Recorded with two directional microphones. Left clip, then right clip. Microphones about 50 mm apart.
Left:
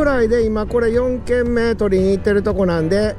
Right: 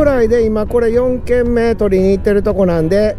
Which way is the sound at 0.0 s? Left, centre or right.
Right.